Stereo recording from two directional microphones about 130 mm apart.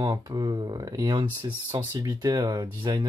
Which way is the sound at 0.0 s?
30° right (ahead or behind).